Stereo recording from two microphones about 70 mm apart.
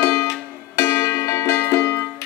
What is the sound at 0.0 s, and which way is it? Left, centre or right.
Music, left.